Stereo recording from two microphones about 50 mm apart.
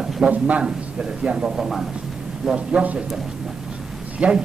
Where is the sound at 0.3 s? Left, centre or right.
Right.